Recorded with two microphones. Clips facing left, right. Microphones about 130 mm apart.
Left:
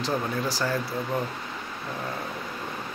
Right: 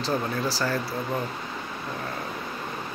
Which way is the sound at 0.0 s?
15° left (ahead or behind).